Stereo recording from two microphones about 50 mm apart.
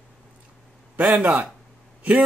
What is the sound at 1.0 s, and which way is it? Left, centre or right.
Speech, right.